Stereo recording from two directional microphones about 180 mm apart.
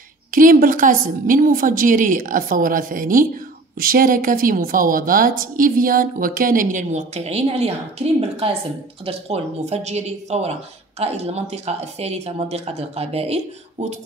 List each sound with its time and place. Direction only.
0.3 s a woman's voice: 50° right (ahead or behind)